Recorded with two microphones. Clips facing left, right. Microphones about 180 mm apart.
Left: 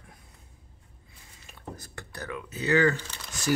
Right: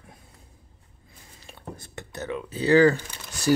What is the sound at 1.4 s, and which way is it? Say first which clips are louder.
Speech: right 2 dB; 30° right (ahead or behind).